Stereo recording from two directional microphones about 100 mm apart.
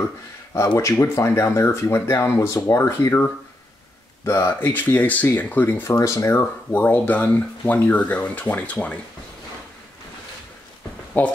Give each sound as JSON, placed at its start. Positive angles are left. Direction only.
{"t": 0.7, "sound": "speech", "side_deg": 30}
{"t": 5.9, "sound": "speech", "side_deg": 30}
{"t": 6.7, "sound": "speech", "side_deg": 15}
{"t": 11.1, "sound": "speech", "side_deg": 15}